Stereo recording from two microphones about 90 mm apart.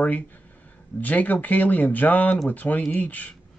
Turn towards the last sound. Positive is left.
turn(degrees=15)  # may be behind; listen again after turning